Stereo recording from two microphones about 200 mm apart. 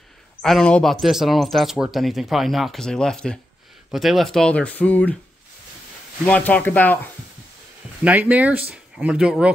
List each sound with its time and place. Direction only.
0.4 s speech: centre (ahead or behind)
6.2 s speech: 5° left (ahead or behind)
8.0 s speech: 5° right (ahead or behind)